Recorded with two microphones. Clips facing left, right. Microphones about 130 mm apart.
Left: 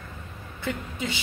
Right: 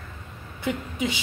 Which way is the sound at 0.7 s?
15° right (ahead or behind).